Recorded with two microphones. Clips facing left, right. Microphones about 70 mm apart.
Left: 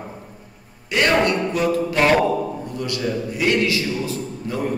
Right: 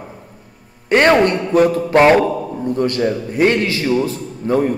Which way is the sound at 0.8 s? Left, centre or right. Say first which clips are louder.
Right 6 dB; right.